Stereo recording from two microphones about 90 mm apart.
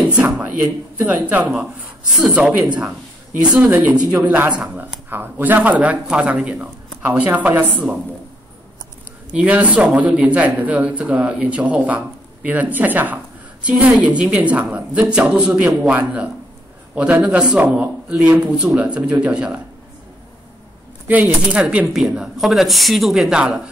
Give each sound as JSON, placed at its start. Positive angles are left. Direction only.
{"t": 0.1, "sound": "speech", "side_deg": -20}
{"t": 9.3, "sound": "a man's voice", "side_deg": -15}
{"t": 21.1, "sound": "speech", "side_deg": -20}